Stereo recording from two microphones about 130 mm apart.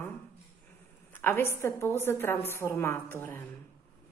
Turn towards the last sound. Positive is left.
turn(degrees=15)  # may be behind; listen again after turning